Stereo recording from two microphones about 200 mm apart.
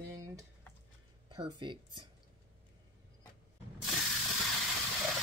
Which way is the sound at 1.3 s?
25° right (ahead or behind).